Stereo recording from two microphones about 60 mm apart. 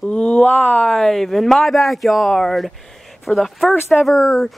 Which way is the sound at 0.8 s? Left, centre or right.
Centre.